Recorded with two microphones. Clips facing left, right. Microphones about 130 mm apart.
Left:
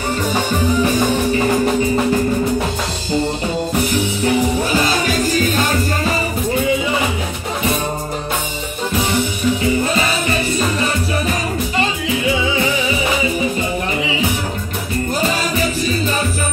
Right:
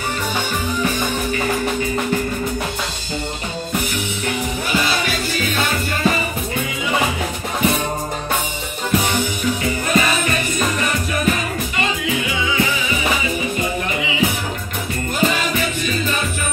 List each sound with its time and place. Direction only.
4.7 s music: 40° left (ahead or behind)
9.8 s music: 30° left (ahead or behind)
15.1 s music: 35° left (ahead or behind)